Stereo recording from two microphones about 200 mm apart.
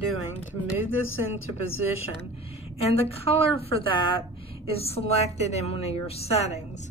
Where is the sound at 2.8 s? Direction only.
30° left (ahead or behind).